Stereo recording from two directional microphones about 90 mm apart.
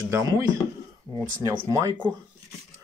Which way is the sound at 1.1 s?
40° right (ahead or behind).